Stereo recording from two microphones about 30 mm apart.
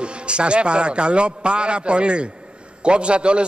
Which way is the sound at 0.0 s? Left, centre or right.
Right.